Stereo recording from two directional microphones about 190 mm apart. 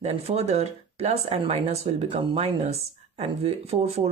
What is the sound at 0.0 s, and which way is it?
Speech, 35° right (ahead or behind).